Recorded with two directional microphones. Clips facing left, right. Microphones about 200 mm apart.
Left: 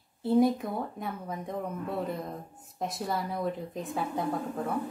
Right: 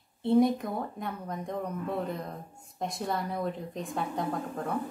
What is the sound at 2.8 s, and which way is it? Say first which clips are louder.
A woman's voice: even; centre (ahead or behind).